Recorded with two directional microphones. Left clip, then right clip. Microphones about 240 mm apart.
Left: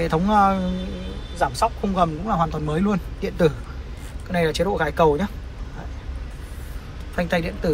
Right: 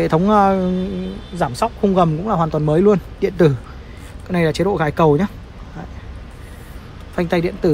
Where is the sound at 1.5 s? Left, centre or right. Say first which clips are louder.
Right 8 dB; right.